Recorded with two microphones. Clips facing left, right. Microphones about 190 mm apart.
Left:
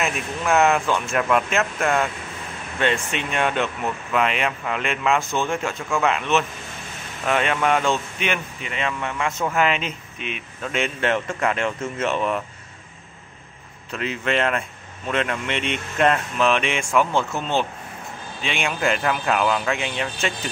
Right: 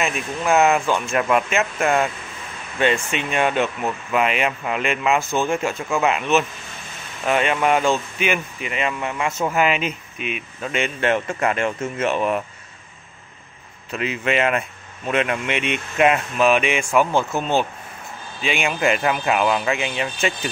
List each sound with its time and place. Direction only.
0.4 s speech: 5° right (ahead or behind)
13.9 s speech: 5° right (ahead or behind)